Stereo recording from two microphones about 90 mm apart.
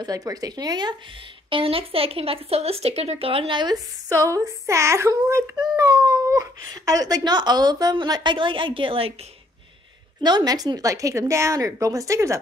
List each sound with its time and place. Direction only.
0.0 s speech: 40° right (ahead or behind)
1.5 s speech: 90° right; by 3.7 s 60° right (ahead or behind)
3.7 s a woman's voice: 40° right (ahead or behind); by 9.1 s 80° right
10.2 s a woman's voice: 50° right (ahead or behind)